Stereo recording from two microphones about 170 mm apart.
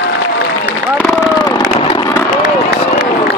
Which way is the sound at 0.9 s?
20° left (ahead or behind).